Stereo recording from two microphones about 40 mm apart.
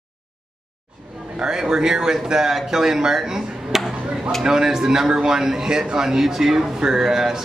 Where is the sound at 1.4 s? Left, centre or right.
Centre.